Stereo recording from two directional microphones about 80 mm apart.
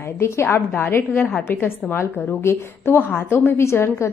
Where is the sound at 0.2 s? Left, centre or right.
Left.